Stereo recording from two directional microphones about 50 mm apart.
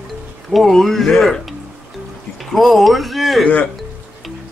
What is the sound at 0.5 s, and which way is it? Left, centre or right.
Speech, centre.